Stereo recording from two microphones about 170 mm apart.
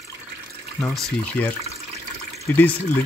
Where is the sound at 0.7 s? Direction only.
10° left (ahead or behind).